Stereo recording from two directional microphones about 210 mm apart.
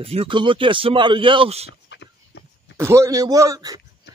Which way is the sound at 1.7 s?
55° left (ahead or behind).